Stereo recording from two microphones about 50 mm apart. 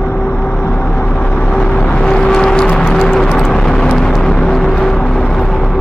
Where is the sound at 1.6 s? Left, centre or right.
Left.